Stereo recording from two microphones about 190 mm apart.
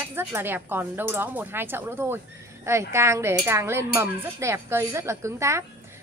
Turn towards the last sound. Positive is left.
turn(degrees=-15)  # may be behind; listen again after turning